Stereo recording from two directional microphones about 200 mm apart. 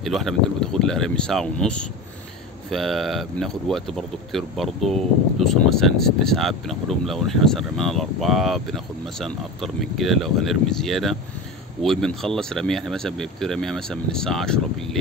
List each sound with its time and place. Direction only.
0.0 s speech: centre (ahead or behind)